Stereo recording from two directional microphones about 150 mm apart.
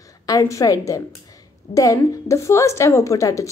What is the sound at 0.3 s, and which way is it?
A woman's voice, 20° left (ahead or behind).